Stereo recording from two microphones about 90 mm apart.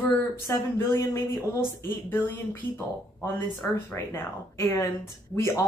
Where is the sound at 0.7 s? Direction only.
30° left (ahead or behind).